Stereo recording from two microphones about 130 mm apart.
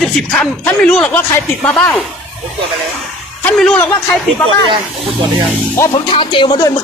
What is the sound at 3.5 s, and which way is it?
Speech, 5° left (ahead or behind).